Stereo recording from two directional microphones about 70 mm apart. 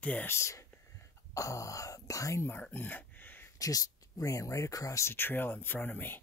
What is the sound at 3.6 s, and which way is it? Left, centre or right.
Speech, left.